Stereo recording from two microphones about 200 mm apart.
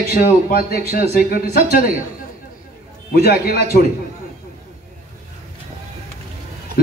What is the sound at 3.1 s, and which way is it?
Speech, 50° left (ahead or behind).